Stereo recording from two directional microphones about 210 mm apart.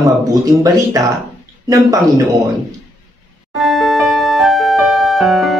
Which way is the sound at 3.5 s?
Centre (ahead or behind).